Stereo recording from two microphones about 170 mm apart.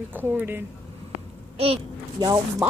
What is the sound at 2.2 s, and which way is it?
Speech, 25° right (ahead or behind).